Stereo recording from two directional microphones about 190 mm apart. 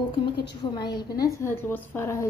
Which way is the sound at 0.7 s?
20° left (ahead or behind).